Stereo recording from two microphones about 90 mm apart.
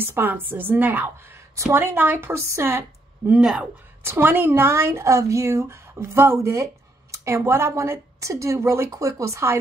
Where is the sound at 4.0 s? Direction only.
25° right (ahead or behind).